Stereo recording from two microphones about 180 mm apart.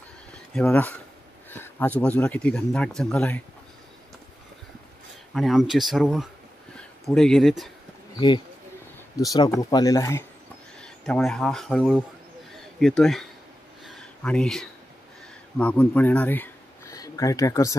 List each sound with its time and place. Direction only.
0.6 s speech: 5° left (ahead or behind)
5.3 s speech: centre (ahead or behind)
9.3 s speech: 20° left (ahead or behind)
10.8 s speech: 5° left (ahead or behind)
13.8 s a sound: 5° left (ahead or behind)
15.5 s speech: 5° left (ahead or behind)